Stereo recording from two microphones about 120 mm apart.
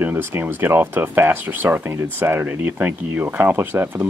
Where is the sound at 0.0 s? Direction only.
20° right (ahead or behind).